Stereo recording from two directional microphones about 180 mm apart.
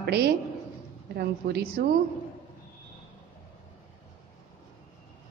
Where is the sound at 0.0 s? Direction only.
60° right (ahead or behind).